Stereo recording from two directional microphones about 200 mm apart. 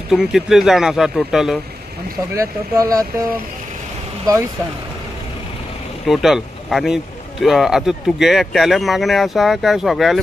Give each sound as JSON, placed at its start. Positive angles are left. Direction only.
{"t": 0.1, "sound": "speech", "side_deg": 0}
{"t": 2.3, "sound": "speech", "side_deg": -15}
{"t": 6.0, "sound": "speech", "side_deg": 0}